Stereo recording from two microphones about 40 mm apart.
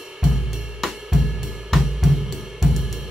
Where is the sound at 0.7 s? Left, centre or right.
Centre.